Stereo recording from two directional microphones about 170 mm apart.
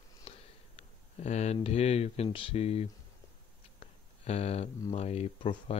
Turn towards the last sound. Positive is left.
turn(degrees=30)  # may be behind; listen again after turning